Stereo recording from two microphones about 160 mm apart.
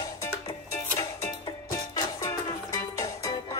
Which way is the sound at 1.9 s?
20° left (ahead or behind).